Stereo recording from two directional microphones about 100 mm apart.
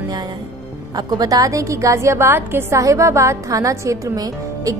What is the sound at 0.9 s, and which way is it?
A woman's voice, 40° right (ahead or behind).